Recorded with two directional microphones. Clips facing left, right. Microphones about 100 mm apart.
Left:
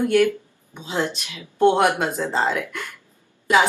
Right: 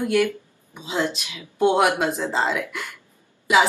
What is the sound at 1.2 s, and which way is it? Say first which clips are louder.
Speech: left 5 dB; 15° right (ahead or behind).